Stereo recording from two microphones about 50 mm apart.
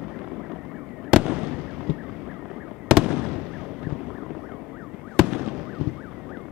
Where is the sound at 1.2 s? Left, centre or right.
Centre.